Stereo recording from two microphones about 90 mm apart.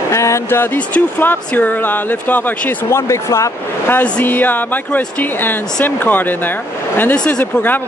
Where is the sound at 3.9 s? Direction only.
20° left (ahead or behind).